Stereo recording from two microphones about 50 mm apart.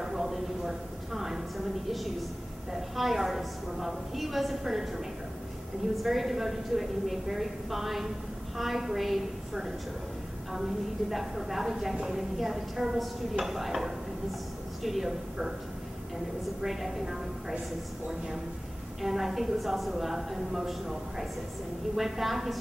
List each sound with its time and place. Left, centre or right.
0.0 s a sound: centre
2.7 s a woman's voice: centre
6.0 s a woman's voice: centre
16.6 s a woman's voice: centre
18.9 s a woman's voice: centre